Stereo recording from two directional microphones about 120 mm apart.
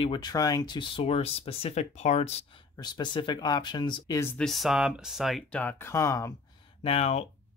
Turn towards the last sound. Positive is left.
turn(degrees=60)  # may be behind; listen again after turning